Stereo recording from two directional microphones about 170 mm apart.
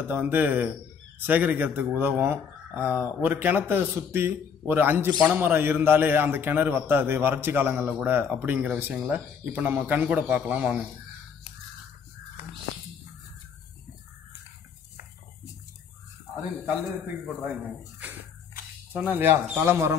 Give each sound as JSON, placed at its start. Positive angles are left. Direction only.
{"t": 0.1, "sound": "speech", "side_deg": -10}
{"t": 17.4, "sound": "speech", "side_deg": -10}